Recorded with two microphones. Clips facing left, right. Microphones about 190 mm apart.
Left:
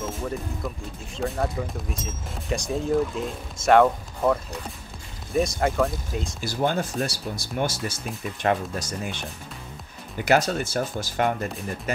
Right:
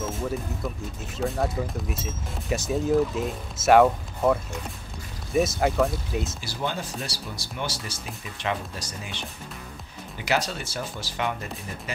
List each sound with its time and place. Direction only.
1.1 s speech: centre (ahead or behind)
6.4 s speech: 50° left (ahead or behind)